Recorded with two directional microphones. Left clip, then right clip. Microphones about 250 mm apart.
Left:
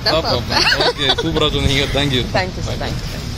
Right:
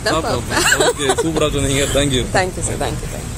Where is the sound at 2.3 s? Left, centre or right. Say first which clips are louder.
Right 2 dB; right.